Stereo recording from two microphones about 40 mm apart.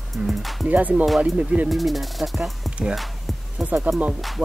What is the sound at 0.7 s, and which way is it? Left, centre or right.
Speech, right.